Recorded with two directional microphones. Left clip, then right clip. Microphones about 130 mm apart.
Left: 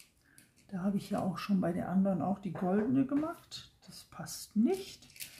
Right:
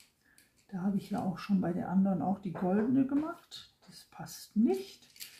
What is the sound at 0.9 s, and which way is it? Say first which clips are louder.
Speech: left 3 dB; 45° left (ahead or behind).